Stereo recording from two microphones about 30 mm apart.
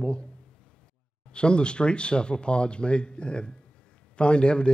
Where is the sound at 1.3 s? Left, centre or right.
Left.